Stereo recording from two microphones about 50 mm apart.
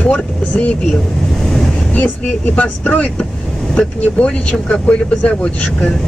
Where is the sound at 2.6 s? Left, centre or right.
Left.